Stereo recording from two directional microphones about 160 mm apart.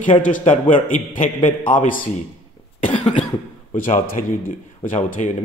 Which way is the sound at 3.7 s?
60° left (ahead or behind).